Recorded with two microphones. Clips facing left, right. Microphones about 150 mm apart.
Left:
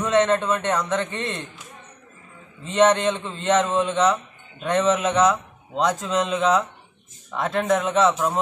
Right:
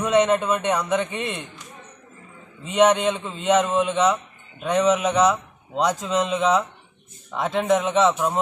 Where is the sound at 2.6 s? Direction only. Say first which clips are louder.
Even; 10° right (ahead or behind).